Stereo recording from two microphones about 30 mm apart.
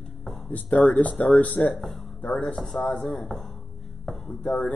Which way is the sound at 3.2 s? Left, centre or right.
Centre.